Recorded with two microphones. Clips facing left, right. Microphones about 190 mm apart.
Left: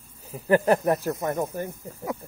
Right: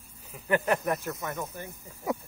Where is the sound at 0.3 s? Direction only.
35° left (ahead or behind).